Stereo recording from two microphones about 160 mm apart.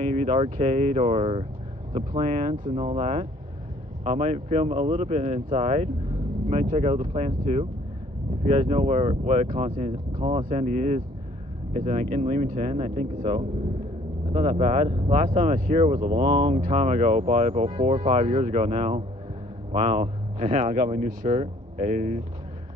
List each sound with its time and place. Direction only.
0.0 s speech: 45° right (ahead or behind)
16.0 s speech: 30° right (ahead or behind); by 22.2 s 55° right (ahead or behind)